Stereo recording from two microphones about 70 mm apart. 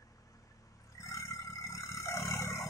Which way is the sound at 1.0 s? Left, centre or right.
Left.